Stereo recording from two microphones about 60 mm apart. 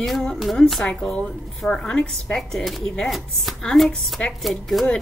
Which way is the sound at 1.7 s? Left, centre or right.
Centre.